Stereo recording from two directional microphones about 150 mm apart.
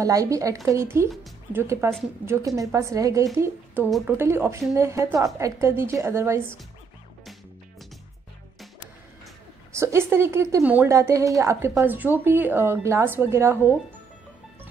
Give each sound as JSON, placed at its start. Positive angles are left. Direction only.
{"t": 0.0, "sound": "a woman's voice", "side_deg": -20}
{"t": 9.7, "sound": "a woman's voice", "side_deg": -20}